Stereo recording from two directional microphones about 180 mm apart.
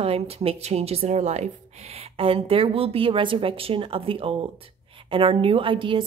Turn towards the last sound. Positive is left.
turn(degrees=-30)  # may be behind; listen again after turning